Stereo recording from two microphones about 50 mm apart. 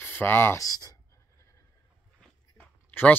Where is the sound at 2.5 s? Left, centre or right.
Left.